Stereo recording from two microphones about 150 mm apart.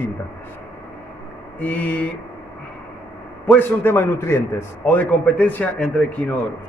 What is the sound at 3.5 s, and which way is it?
A man's voice, 15° left (ahead or behind).